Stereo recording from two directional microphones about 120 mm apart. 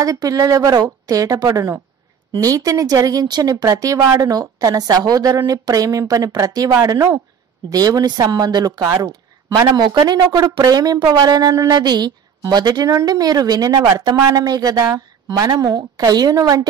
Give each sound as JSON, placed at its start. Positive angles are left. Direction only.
{"t": 0.0, "sound": "a woman's voice", "side_deg": -30}